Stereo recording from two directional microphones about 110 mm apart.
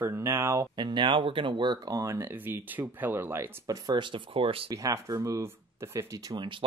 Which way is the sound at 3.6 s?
35° right (ahead or behind).